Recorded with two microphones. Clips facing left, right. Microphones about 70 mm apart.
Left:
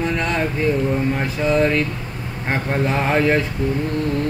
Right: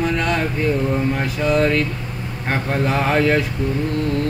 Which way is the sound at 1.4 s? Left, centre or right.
Centre.